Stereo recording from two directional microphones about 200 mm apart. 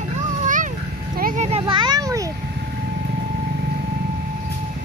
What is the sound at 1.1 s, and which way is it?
Vehicle, 40° right (ahead or behind).